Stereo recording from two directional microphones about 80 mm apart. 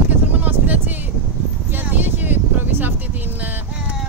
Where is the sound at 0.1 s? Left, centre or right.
Right.